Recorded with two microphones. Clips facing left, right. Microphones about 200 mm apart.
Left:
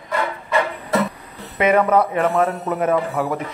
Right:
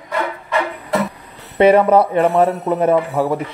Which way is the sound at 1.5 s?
30° right (ahead or behind).